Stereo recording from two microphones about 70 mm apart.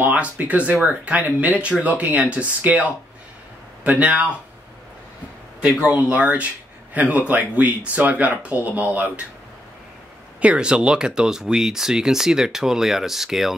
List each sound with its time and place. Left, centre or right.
0.0 s speech: right
5.8 s speech: centre
10.4 s speech: centre